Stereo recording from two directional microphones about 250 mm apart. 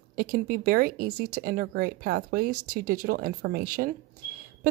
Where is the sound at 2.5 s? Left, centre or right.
Right.